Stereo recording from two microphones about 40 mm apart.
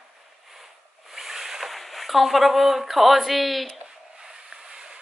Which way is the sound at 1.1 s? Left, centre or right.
Centre.